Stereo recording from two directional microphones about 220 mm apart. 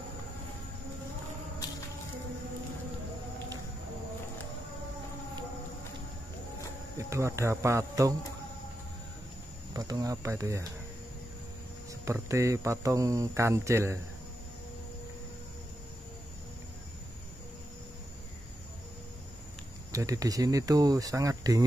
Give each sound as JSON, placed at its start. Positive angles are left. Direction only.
{"t": 7.0, "sound": "speech", "side_deg": -15}
{"t": 9.8, "sound": "speech", "side_deg": -15}
{"t": 11.9, "sound": "speech", "side_deg": -15}
{"t": 19.9, "sound": "speech", "side_deg": -15}